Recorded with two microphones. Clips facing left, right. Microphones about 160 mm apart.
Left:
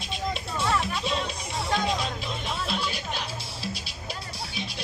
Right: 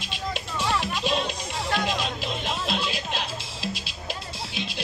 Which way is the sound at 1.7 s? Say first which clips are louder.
Even; 90° right.